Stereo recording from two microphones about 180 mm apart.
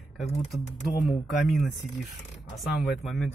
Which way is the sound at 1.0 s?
Centre (ahead or behind).